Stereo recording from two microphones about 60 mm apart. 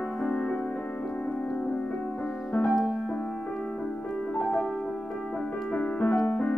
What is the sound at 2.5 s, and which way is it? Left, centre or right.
Music, left.